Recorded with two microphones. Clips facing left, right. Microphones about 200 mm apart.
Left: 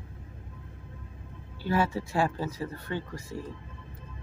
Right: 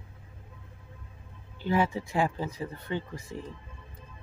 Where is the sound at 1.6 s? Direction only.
20° right (ahead or behind).